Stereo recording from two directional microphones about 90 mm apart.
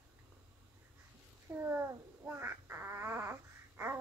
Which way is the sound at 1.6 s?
25° right (ahead or behind).